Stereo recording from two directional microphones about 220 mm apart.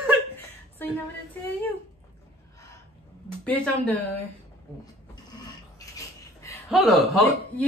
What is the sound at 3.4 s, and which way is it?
Speech, 5° left (ahead or behind).